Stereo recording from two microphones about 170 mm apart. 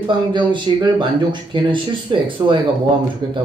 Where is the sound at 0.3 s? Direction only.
25° right (ahead or behind).